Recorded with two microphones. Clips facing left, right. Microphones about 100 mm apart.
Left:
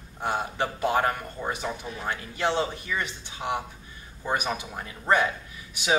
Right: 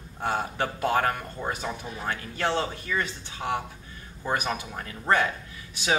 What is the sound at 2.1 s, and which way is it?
Speech, 15° left (ahead or behind).